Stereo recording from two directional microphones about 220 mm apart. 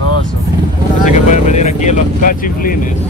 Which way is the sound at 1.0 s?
35° left (ahead or behind).